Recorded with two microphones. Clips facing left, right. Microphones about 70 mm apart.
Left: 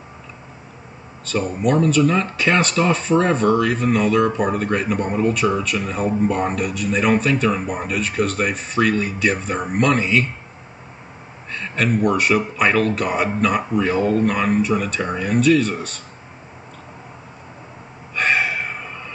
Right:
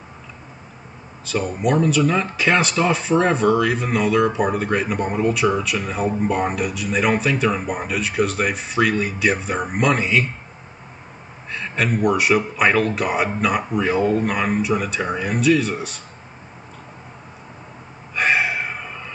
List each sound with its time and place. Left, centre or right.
1.2 s speech: centre
11.5 s speech: centre
18.1 s gasp: centre